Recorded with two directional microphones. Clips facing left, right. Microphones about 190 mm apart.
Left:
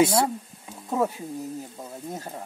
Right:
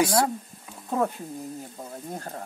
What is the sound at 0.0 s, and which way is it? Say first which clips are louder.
Speech: left 2 dB; 25° left (ahead or behind).